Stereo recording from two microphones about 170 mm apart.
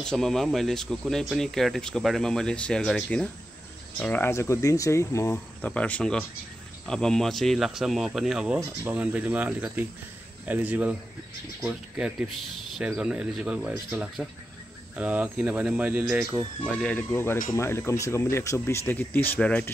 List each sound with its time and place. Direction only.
0.0 s speech: 5° left (ahead or behind)
16.7 s speech: 10° left (ahead or behind)